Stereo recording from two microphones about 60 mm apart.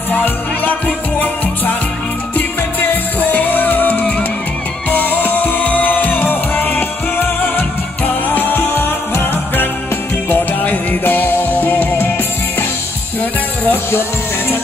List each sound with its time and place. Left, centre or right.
0.1 s music: left
3.2 s music: left
13.2 s music: left